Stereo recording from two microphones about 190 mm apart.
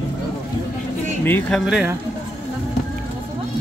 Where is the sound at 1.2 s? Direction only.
10° left (ahead or behind).